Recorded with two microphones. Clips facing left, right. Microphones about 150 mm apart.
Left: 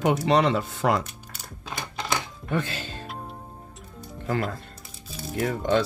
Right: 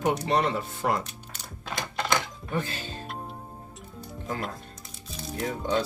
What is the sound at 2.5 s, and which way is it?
Speech, 90° left.